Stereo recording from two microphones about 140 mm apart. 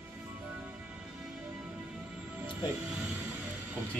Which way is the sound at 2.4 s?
10° right (ahead or behind).